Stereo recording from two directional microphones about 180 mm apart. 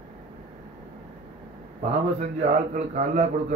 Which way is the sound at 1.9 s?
40° right (ahead or behind).